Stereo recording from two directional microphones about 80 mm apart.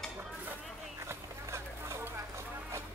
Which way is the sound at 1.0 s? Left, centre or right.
Right.